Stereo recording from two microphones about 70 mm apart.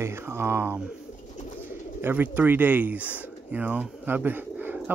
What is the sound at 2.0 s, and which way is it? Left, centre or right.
Speech, right.